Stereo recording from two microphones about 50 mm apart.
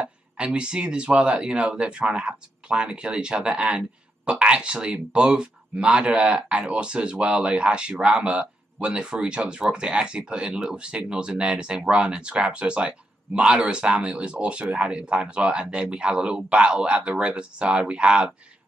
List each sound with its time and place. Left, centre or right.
0.0 s speech: right